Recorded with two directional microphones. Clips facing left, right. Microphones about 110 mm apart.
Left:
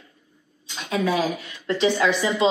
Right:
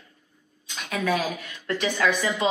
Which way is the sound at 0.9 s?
15° left (ahead or behind).